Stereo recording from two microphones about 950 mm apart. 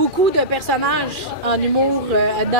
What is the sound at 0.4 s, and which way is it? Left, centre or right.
A woman's voice, right.